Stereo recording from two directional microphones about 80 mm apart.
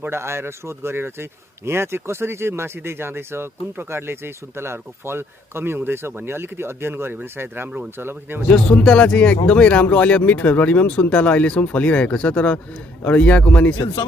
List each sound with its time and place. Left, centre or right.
0.0 s speech: right
8.5 s speech: centre